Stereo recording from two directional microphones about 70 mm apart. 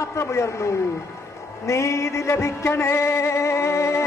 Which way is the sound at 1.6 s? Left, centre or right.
Left.